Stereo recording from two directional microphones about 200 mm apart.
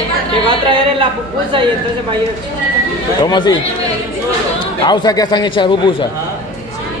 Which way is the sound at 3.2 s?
20° left (ahead or behind).